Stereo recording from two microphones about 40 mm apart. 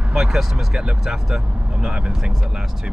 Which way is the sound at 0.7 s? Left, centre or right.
Right.